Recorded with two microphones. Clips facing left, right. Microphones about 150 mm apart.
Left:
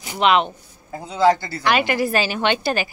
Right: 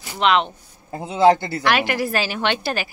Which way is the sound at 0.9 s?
25° right (ahead or behind).